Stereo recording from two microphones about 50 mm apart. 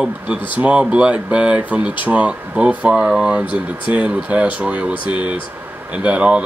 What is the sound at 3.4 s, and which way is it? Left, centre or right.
Speech, right.